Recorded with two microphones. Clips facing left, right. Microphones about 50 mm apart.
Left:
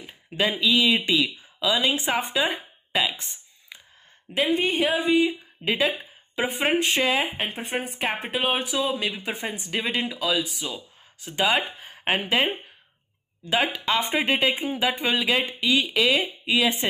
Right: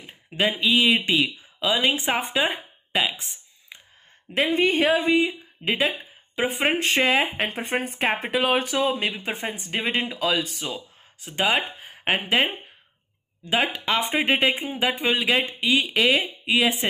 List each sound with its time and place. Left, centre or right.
0.0 s a sound: right
0.6 s speech: right
2.5 s a sound: centre
4.4 s a woman's voice: right
5.2 s speech: right
6.8 s a woman's voice: right
8.2 s speech: right
9.2 s speech: right
10.1 s a woman's voice: right
11.9 s speech: centre
13.5 s speech: right
15.9 s speech: right